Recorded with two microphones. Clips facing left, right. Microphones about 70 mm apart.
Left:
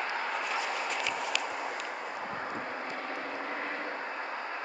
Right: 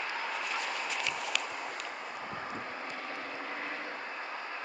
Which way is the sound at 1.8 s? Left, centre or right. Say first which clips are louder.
Left 3 dB; left.